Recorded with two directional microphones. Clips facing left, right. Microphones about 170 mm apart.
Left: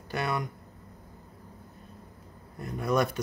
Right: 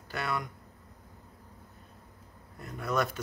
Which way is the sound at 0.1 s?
20° left (ahead or behind).